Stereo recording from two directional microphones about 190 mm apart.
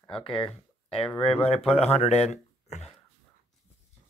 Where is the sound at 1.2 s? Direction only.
30° left (ahead or behind).